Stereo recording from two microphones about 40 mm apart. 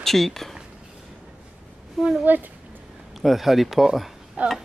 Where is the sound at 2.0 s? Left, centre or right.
Centre.